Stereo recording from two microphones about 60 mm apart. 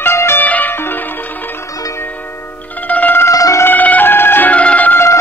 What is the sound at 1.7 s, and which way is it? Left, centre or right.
Music, left.